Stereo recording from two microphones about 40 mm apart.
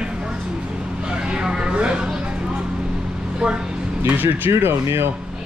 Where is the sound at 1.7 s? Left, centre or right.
Right.